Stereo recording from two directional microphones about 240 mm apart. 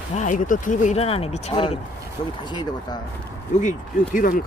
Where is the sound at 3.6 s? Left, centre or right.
Left.